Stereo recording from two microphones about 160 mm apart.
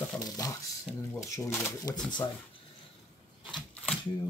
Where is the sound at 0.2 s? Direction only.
20° left (ahead or behind).